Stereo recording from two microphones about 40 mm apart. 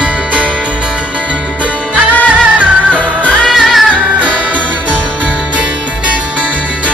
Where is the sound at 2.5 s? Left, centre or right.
Right.